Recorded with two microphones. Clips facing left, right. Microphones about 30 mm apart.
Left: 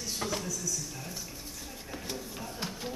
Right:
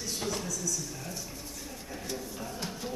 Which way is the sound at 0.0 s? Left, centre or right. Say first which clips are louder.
Even; centre.